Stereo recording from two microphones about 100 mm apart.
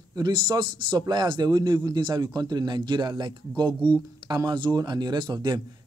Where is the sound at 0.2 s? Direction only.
50° right (ahead or behind).